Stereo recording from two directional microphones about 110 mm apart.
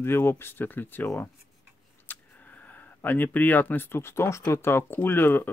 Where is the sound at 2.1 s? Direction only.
15° left (ahead or behind).